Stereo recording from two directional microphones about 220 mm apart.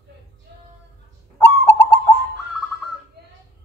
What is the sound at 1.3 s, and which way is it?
Bird, 10° left (ahead or behind).